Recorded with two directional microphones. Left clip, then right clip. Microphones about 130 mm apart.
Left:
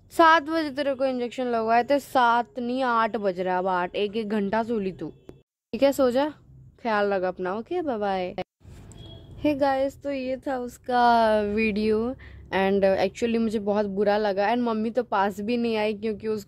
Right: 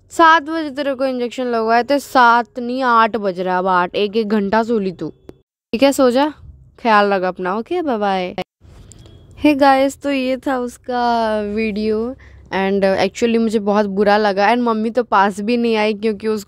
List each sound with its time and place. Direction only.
0.1 s a woman's voice: 25° right (ahead or behind)
0.8 s a woman's voice: 40° right (ahead or behind)
5.7 s a woman's voice: 50° right (ahead or behind)
9.4 s a woman's voice: 70° right (ahead or behind)
10.9 s a woman's voice: 30° right (ahead or behind)
12.9 s a woman's voice: 55° right (ahead or behind)
14.6 s a woman's voice: 40° right (ahead or behind); by 16.4 s 60° right (ahead or behind)